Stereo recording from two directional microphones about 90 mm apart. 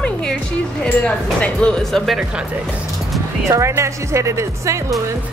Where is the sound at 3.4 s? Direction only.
35° right (ahead or behind).